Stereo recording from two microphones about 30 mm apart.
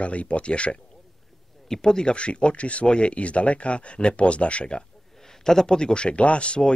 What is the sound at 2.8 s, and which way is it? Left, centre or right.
Speech, left.